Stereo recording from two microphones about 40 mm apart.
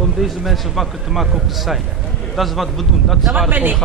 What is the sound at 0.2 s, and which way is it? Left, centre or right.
Speech, centre.